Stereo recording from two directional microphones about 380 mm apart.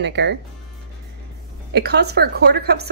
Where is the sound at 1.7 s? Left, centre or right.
Right.